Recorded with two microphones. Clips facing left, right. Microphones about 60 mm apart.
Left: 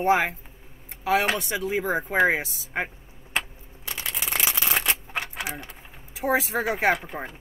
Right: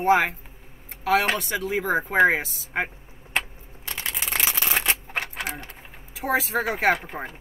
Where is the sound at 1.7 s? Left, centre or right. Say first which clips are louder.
Right 2 dB; centre.